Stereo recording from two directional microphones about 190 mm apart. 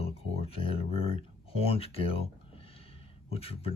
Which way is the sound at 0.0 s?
30° left (ahead or behind).